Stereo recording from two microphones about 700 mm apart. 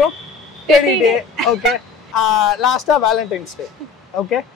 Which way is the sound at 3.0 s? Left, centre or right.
Left.